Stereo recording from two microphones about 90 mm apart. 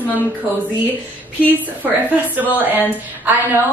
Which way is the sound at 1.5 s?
20° right (ahead or behind).